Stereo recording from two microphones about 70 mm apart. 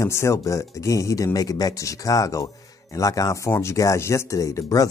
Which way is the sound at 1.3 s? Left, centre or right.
Left.